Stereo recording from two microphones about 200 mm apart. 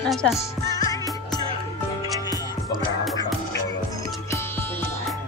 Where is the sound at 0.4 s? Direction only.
15° left (ahead or behind).